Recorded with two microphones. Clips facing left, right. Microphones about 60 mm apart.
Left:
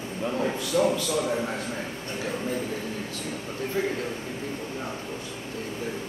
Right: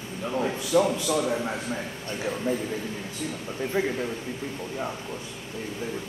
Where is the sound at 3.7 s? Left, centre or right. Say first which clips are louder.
Right 1 dB; right.